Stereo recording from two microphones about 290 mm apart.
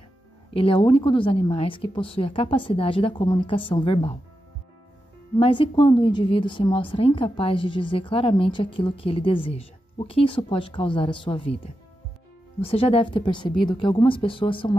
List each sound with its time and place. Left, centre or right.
0.5 s a woman's voice: centre
5.4 s a woman's voice: centre